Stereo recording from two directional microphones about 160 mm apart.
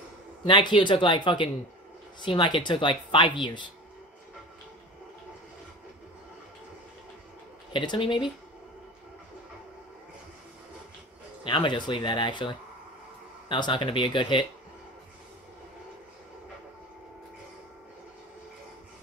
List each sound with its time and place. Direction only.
0.5 s speech: 30° left (ahead or behind)
7.7 s speech: 30° left (ahead or behind)
11.4 s speech: 30° left (ahead or behind)